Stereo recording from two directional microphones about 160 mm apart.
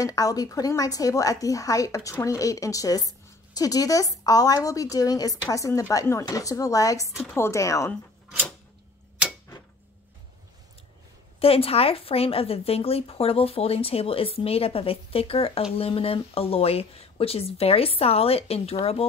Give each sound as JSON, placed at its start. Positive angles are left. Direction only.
{"t": 0.0, "sound": "a woman's voice", "side_deg": 20}
{"t": 11.3, "sound": "a woman's voice", "side_deg": 35}